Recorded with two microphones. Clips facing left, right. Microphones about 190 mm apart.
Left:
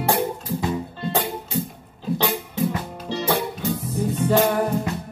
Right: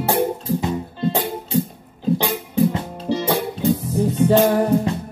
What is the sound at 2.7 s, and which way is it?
Music, 25° right (ahead or behind).